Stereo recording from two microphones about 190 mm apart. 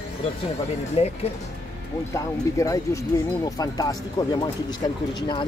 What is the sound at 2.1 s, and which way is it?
Speech, 15° left (ahead or behind).